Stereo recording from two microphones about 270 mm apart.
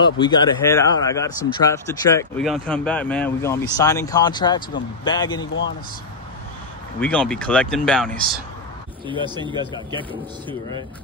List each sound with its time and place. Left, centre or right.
0.0 s speech: centre
7.0 s speech: centre
9.0 s speech: centre